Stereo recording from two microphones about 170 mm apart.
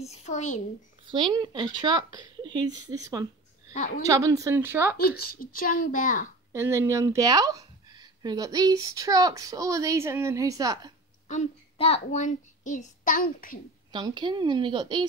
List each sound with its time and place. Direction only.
0.0 s speech: 40° left (ahead or behind)
1.0 s speech: 30° right (ahead or behind)
3.7 s a woman's voice: 45° left (ahead or behind)
4.0 s speech: 20° right (ahead or behind)
4.9 s a child's voice: 65° left (ahead or behind)
6.5 s speech: 15° right (ahead or behind)
11.2 s a child's voice: 40° left (ahead or behind)
13.9 s speech: 25° right (ahead or behind)